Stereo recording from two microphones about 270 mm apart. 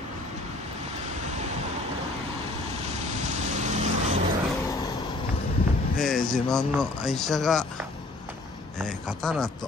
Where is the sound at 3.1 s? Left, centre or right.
Right.